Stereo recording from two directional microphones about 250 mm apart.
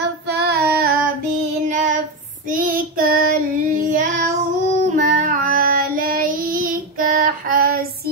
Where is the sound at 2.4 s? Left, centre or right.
Right.